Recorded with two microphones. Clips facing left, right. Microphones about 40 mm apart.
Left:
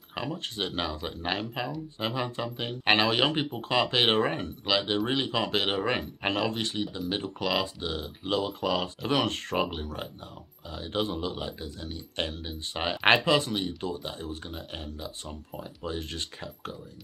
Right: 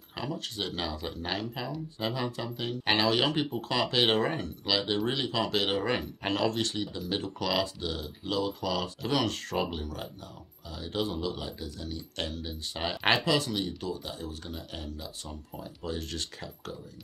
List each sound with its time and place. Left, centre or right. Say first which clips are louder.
0.1 s speech: left 2 dB; left
7.8 s speech: left 2 dB; left